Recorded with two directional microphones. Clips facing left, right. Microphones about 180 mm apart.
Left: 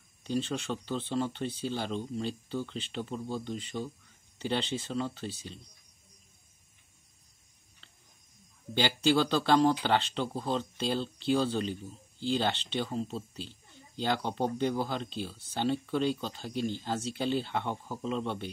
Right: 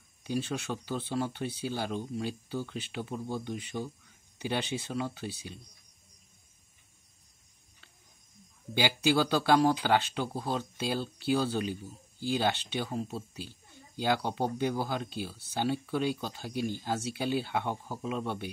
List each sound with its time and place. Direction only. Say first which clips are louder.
0.2 s speech: left 1 dB; 10° right (ahead or behind)
8.7 s speech: even; 10° right (ahead or behind)